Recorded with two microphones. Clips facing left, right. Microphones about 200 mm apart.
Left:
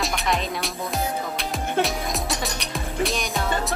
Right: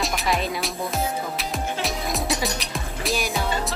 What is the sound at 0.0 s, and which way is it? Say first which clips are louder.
Music: right 1 dB; centre (ahead or behind).